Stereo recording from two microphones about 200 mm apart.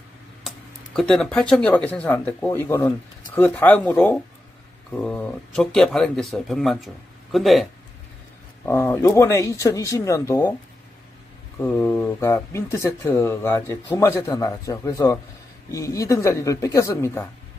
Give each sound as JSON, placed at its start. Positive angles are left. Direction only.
{"t": 0.4, "sound": "speech", "side_deg": 0}
{"t": 8.6, "sound": "speech", "side_deg": 10}
{"t": 11.6, "sound": "speech", "side_deg": 10}